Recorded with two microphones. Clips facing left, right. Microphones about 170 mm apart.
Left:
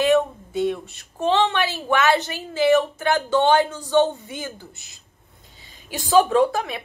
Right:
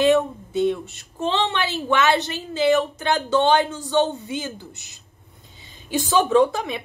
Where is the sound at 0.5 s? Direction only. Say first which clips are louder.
Right 2 dB; 20° right (ahead or behind).